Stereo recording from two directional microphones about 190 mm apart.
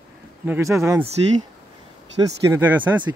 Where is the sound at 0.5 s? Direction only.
15° right (ahead or behind).